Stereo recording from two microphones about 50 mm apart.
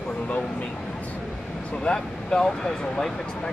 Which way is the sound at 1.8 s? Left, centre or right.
Centre.